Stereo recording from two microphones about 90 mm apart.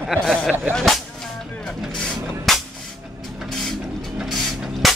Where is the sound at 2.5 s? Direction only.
Centre (ahead or behind).